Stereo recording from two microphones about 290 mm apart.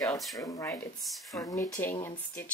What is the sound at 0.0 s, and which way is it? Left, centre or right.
Speech, centre.